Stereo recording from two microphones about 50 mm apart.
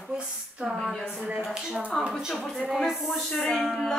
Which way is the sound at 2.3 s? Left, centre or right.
Centre.